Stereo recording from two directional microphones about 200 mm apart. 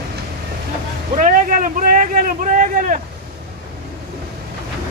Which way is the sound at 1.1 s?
40° right (ahead or behind).